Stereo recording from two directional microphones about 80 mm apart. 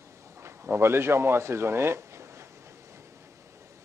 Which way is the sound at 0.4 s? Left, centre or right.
Right.